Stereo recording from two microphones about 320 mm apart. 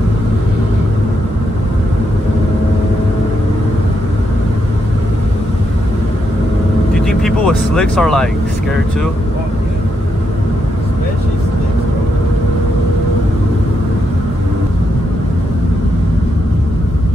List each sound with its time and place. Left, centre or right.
7.1 s vehicle: centre